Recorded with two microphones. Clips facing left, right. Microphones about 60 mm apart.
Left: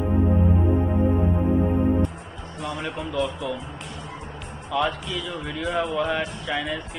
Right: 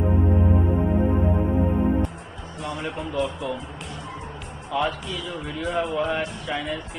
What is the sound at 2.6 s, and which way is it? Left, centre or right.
A man's voice, centre.